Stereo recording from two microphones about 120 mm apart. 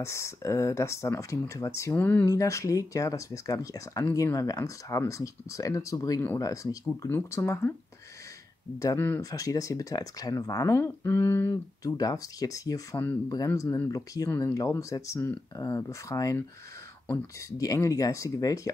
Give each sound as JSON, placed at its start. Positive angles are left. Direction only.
{"t": 0.0, "sound": "speech", "side_deg": 25}
{"t": 2.2, "sound": "speech", "side_deg": 25}
{"t": 8.7, "sound": "speech", "side_deg": 25}
{"t": 17.6, "sound": "speech", "side_deg": 30}